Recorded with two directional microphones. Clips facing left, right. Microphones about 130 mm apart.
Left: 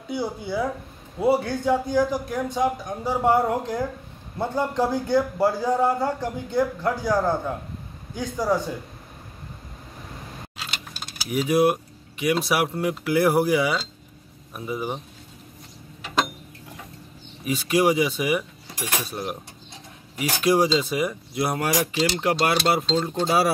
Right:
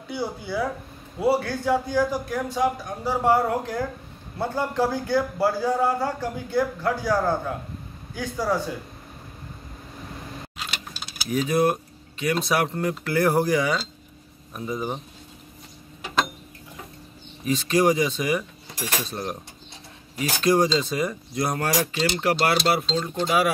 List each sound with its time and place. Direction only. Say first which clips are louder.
0.1 s a man's voice: left 1 dB; 20° left (ahead or behind)
11.2 s speech: left 2 dB; 10° left (ahead or behind)
17.5 s speech: even; 10° left (ahead or behind); by 23.5 s 35° left (ahead or behind)